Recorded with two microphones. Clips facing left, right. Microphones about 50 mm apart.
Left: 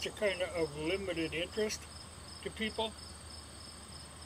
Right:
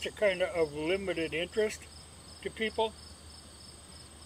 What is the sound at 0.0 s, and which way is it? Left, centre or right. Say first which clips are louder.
Speech: right 5 dB; centre.